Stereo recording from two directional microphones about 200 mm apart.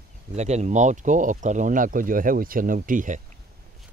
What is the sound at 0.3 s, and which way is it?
Speech, 35° right (ahead or behind).